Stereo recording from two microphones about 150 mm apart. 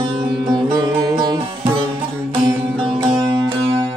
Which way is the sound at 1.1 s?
30° right (ahead or behind).